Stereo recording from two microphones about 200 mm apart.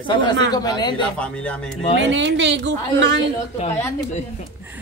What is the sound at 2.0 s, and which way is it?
A woman's voice, 65° right (ahead or behind).